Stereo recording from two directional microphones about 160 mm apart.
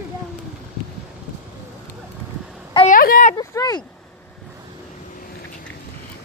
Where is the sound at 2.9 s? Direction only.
60° left (ahead or behind).